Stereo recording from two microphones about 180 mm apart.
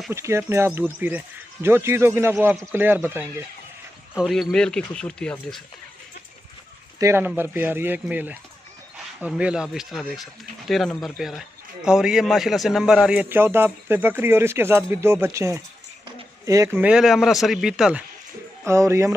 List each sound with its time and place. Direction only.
0.1 s speech: 15° right (ahead or behind)
4.1 s a man's voice: centre (ahead or behind)
7.0 s a man's voice: 15° right (ahead or behind)
16.7 s a man's voice: 5° right (ahead or behind)
18.7 s speech: 15° right (ahead or behind)